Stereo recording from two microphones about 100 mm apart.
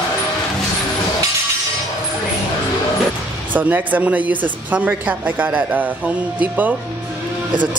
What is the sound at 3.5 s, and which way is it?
Speech, 20° right (ahead or behind).